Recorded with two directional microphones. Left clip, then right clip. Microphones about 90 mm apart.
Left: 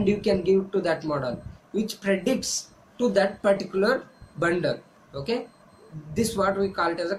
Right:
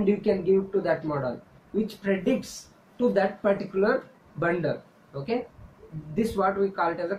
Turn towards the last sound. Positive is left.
turn(degrees=25)  # may be behind; listen again after turning